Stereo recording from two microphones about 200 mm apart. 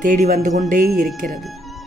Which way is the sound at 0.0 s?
40° right (ahead or behind).